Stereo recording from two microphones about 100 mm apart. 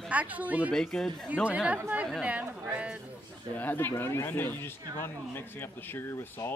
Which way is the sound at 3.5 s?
20° left (ahead or behind).